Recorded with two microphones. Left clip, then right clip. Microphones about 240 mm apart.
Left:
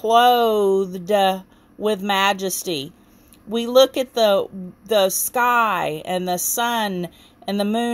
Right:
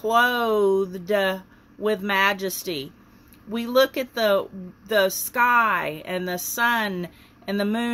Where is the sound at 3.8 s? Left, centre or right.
Left.